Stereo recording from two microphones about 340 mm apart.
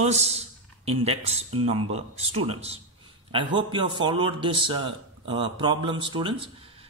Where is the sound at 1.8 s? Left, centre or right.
Right.